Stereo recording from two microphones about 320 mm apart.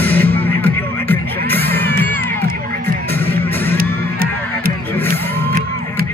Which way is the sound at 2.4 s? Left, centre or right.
Right.